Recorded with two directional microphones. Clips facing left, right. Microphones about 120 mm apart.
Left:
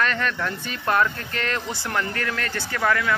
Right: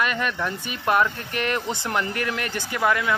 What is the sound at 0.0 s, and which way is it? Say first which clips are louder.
Speech: even; 15° right (ahead or behind).